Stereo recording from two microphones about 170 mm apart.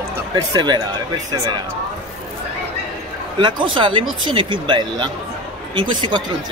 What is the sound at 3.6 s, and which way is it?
Speech, 30° right (ahead or behind).